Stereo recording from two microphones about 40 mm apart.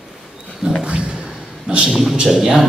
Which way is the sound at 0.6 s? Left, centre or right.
Centre.